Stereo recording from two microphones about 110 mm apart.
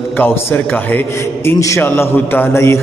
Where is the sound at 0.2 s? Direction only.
20° left (ahead or behind).